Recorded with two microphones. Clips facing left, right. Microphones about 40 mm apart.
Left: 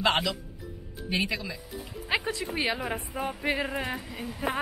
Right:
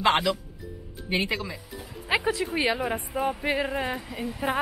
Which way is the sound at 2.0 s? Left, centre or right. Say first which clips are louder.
Right 4 dB; centre.